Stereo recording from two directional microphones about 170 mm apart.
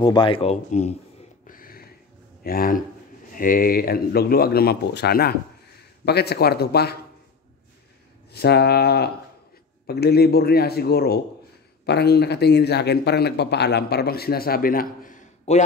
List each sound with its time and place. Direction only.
0.0 s speech: 30° left (ahead or behind)
1.5 s a sound: 55° left (ahead or behind)
2.4 s speech: 55° left (ahead or behind)
8.3 s speech: 70° left (ahead or behind)